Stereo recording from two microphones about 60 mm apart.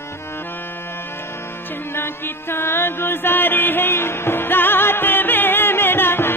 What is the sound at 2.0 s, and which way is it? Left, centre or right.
Mantra, left.